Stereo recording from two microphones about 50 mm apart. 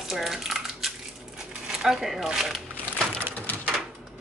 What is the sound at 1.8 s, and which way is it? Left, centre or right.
Speech, centre.